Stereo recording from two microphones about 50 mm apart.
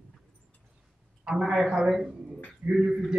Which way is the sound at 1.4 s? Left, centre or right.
Centre.